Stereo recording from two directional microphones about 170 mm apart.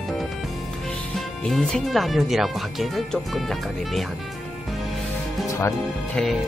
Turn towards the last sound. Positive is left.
turn(degrees=15)  # may be behind; listen again after turning